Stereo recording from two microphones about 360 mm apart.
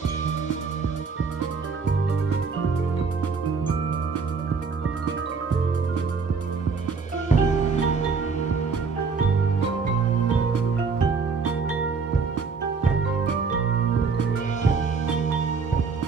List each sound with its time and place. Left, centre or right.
7.3 s music: centre
14.6 s music: centre